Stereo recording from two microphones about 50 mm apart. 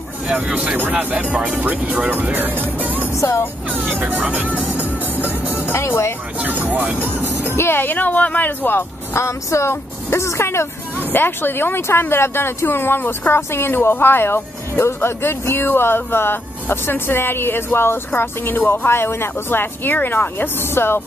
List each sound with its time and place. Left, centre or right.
0.5 s speech: right
3.9 s speech: right
5.7 s speech: left
6.4 s speech: right
7.4 s speech: left
8.5 s speech: left
9.1 s speech: left
11.1 s speech: left
18.1 s speech: left
18.9 s speech: left